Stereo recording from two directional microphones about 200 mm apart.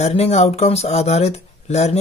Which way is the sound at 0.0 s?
35° left (ahead or behind).